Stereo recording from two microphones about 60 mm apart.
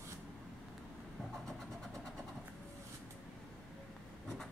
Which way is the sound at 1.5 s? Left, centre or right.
Centre.